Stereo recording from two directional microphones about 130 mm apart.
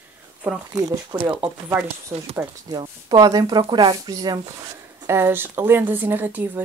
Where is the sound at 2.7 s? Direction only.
30° right (ahead or behind).